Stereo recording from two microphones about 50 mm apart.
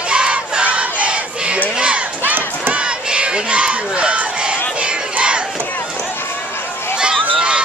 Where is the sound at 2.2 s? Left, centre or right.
Right.